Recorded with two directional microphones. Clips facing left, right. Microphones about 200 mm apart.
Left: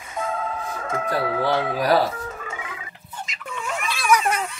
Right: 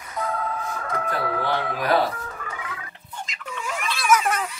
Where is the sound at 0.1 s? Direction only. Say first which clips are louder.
Even; 25° left (ahead or behind).